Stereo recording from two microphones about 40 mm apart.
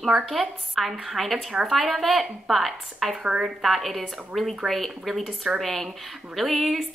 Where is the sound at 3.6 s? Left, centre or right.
Centre.